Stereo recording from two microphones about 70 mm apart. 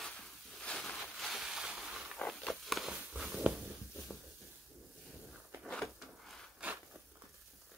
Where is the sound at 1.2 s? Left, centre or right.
Centre.